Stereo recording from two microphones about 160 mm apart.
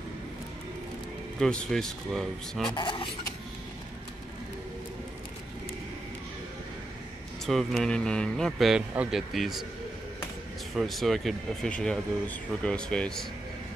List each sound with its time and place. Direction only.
1.4 s speech: 5° left (ahead or behind)
2.7 s speech: 30° left (ahead or behind)
7.4 s speech: centre (ahead or behind)
10.7 s speech: centre (ahead or behind)